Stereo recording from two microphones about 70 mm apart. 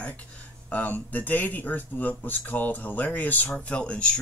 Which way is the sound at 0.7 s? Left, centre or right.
Left.